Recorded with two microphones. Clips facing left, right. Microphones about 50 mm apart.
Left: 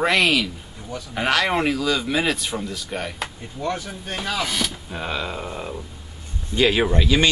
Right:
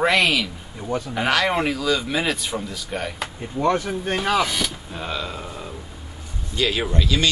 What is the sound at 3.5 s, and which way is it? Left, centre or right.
Speech, right.